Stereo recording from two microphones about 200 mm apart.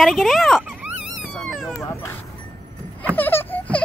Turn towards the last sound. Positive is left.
turn(degrees=10)  # may be behind; listen again after turning